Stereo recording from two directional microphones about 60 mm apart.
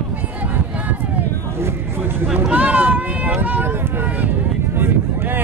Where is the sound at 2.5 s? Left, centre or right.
Right.